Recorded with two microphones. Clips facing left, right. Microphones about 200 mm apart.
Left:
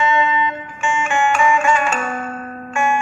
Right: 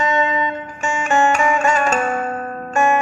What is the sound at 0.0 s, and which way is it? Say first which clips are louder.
Music: left 1 dB; 40° right (ahead or behind).